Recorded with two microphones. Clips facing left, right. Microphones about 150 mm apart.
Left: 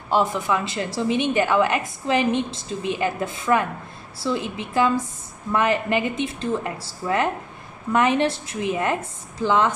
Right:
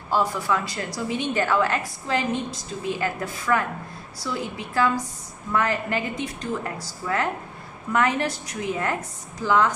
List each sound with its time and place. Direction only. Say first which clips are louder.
0.1 s a woman's voice: left 2 dB; 20° left (ahead or behind)